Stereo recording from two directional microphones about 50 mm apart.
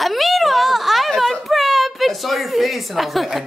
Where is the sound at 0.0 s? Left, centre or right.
Centre.